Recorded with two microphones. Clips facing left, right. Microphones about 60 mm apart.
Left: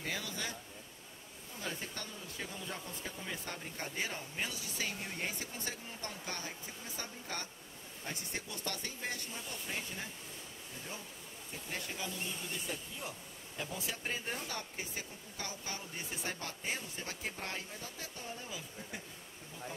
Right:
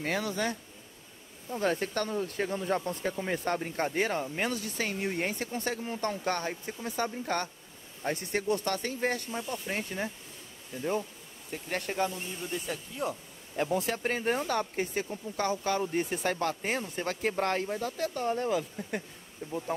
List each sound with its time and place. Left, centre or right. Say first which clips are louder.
0.0 s speech: right 10 dB; right
11.7 s speech: right 11 dB; right
19.4 s speech: right 18 dB; right